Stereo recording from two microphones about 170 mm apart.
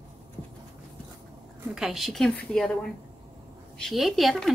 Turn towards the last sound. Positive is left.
turn(degrees=0)  # may be behind; listen again after turning